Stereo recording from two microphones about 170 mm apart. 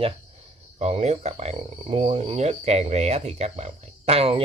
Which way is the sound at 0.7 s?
40° right (ahead or behind).